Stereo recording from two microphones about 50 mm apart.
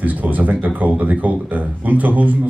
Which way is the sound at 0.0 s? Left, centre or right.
Right.